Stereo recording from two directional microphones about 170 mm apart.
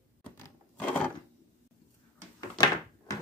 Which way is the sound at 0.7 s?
10° left (ahead or behind).